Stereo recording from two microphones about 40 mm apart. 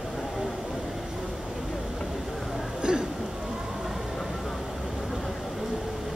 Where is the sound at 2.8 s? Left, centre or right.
Right.